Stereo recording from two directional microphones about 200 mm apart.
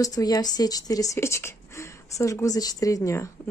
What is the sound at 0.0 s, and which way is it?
A woman's voice, 20° left (ahead or behind).